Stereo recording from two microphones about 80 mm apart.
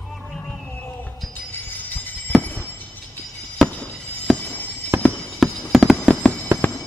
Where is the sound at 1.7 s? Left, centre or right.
Left.